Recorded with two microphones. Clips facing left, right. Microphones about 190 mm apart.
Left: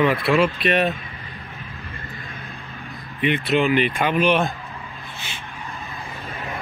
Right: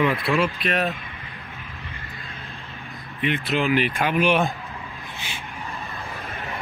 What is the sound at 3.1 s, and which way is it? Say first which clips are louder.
Speech: left 4 dB; centre (ahead or behind).